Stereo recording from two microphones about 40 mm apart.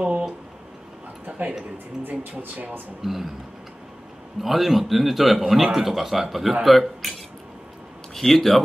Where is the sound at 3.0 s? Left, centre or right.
Centre.